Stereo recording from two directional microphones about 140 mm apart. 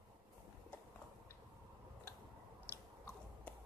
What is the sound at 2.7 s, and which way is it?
Chewing, 15° left (ahead or behind).